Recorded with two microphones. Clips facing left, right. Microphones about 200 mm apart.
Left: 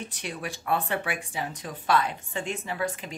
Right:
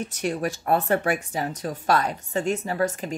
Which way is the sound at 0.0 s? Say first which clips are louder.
Right 9 dB; 45° right (ahead or behind).